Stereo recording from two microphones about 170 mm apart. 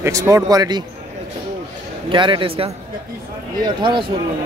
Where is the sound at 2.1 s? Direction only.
30° right (ahead or behind).